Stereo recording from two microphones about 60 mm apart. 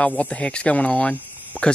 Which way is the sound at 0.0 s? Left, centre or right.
Centre.